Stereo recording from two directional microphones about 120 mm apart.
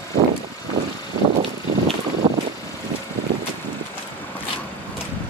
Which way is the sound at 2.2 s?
40° right (ahead or behind).